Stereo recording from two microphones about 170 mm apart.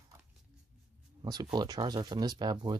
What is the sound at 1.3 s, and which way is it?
Speech, 25° right (ahead or behind).